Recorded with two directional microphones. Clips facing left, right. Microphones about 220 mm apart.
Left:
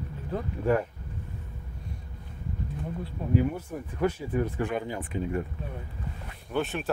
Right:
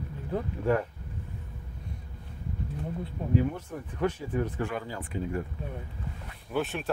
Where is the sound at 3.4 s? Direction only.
10° left (ahead or behind).